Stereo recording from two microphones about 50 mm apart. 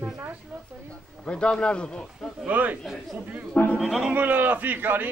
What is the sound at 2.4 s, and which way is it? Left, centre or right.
Speech, right.